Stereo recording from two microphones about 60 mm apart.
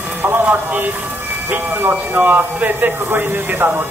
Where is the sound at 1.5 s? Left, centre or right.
Right.